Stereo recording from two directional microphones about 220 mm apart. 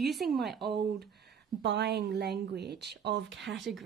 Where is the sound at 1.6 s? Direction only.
50° right (ahead or behind).